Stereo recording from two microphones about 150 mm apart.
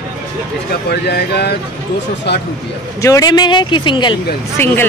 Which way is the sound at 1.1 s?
90° left.